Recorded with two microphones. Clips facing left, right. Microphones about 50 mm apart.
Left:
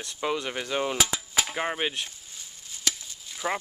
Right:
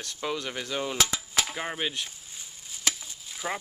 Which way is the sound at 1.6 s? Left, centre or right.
Centre.